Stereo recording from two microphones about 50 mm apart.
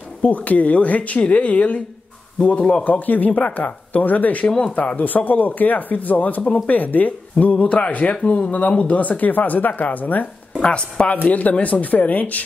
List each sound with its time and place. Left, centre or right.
0.2 s speech: left
4.5 s speech: centre
4.7 s speech: left
10.6 s speech: left